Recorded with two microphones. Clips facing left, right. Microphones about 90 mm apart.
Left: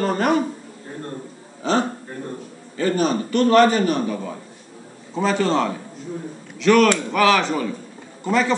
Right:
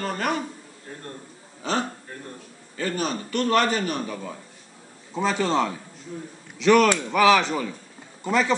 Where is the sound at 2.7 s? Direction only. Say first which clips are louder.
Left 7 dB; centre (ahead or behind).